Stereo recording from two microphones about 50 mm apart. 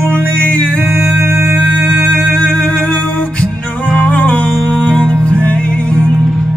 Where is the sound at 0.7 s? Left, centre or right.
Right.